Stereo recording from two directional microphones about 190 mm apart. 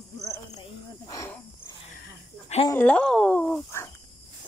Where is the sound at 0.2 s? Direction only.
20° left (ahead or behind).